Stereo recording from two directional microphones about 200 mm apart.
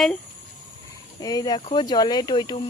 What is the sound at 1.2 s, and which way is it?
Speech, 20° left (ahead or behind).